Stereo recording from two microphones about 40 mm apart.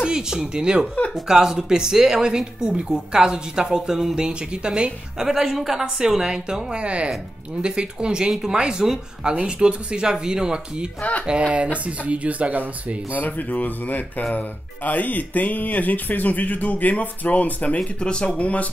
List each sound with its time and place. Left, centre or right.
0.0 s a woman's voice: centre
5.3 s a woman's voice: centre
9.3 s a woman's voice: right
11.0 s speech: left
11.2 s speech: right
13.1 s speech: left
17.7 s speech: left
18.4 s speech: left